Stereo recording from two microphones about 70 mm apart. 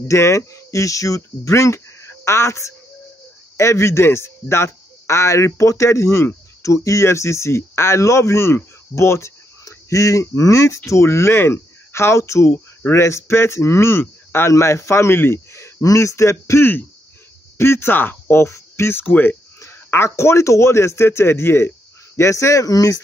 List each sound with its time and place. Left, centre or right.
0.1 s speech: left
19.6 s speech: left